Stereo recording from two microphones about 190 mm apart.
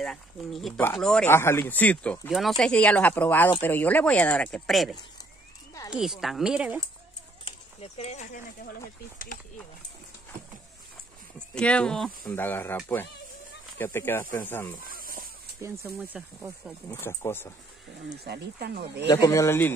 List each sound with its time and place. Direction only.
0.0 s speech: centre (ahead or behind)
7.4 s a sound: 35° left (ahead or behind)
11.3 s speech: 5° left (ahead or behind)
15.6 s speech: 15° right (ahead or behind)
17.0 s speech: 10° left (ahead or behind)
18.2 s speech: 60° right (ahead or behind)
19.0 s speech: 15° left (ahead or behind)